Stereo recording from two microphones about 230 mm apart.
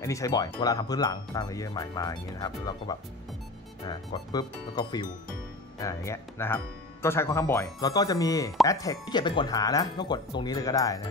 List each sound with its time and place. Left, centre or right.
0.0 s speech: centre